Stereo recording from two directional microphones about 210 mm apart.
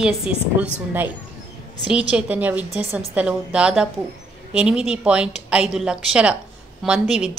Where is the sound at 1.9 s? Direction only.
5° right (ahead or behind).